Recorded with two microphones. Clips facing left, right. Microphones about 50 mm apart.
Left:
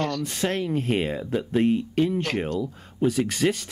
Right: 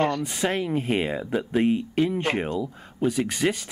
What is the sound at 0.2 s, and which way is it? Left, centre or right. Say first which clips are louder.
Speech: right 1 dB; centre.